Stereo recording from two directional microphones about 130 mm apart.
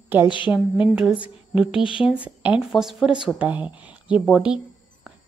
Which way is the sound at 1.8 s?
40° left (ahead or behind).